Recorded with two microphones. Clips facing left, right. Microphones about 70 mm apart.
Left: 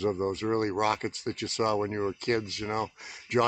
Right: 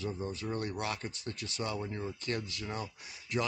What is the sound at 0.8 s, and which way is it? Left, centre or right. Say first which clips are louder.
Speech: left 9 dB; left.